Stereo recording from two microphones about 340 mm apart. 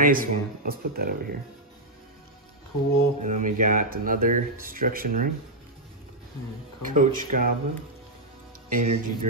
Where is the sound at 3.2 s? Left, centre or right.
Right.